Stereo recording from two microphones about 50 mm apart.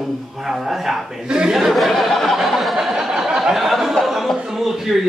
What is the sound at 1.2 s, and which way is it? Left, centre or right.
Chuckle, centre.